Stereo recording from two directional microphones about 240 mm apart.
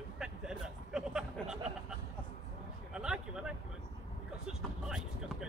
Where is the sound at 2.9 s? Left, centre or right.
Centre.